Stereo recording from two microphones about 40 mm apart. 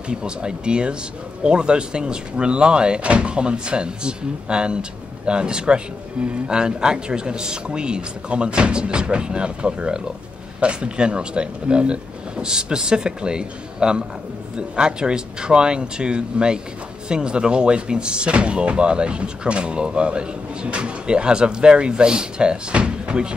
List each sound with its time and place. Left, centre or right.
0.1 s speech: right